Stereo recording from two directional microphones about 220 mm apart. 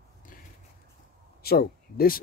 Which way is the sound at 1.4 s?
45° left (ahead or behind).